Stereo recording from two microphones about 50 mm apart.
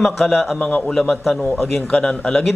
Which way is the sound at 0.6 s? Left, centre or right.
Left.